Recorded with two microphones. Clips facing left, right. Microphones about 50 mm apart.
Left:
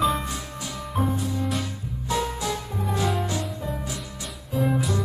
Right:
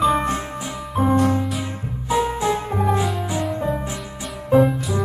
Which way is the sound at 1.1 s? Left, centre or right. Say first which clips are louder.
Right 11 dB; right.